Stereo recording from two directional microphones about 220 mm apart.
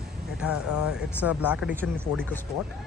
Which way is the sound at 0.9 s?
5° right (ahead or behind).